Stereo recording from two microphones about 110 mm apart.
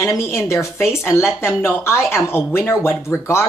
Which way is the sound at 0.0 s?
25° left (ahead or behind).